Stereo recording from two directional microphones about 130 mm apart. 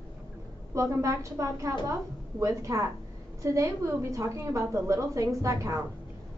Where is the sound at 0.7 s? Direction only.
25° right (ahead or behind).